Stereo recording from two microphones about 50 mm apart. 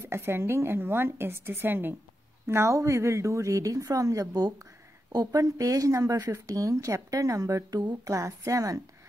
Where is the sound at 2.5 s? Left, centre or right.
Right.